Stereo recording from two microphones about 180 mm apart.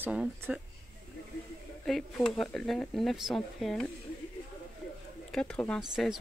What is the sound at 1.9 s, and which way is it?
Speech, centre (ahead or behind).